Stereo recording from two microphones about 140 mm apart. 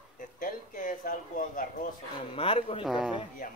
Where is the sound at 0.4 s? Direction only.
75° left (ahead or behind).